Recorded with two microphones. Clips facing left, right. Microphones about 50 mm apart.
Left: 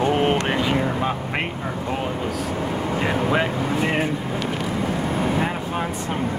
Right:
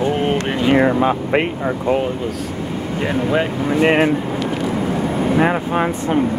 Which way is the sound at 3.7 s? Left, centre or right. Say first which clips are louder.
Right 10 dB; right.